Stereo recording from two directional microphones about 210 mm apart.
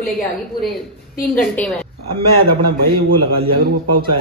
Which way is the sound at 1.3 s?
10° left (ahead or behind).